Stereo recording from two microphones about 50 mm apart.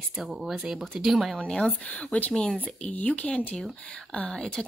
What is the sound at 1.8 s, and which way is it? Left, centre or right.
Speech, left.